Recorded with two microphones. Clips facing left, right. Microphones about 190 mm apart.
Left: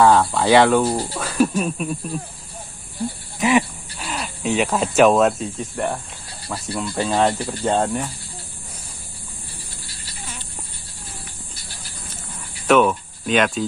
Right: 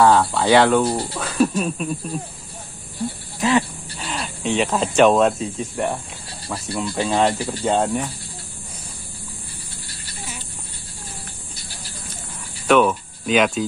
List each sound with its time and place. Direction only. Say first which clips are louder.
0.0 s speech: even; centre (ahead or behind)
3.3 s speech: left 1 dB; 15° left (ahead or behind)
4.0 s speech: even; centre (ahead or behind)
12.6 s speech: even; centre (ahead or behind)